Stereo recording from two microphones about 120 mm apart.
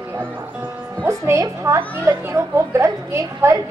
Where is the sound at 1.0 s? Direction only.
25° right (ahead or behind).